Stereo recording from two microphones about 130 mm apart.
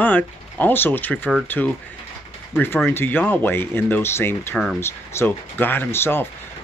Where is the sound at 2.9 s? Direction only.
15° left (ahead or behind).